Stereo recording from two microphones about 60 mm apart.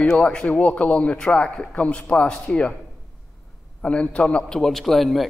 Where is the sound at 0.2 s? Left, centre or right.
Centre.